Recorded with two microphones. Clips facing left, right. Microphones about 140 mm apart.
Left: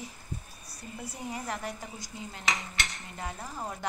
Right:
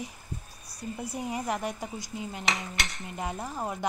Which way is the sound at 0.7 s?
15° right (ahead or behind).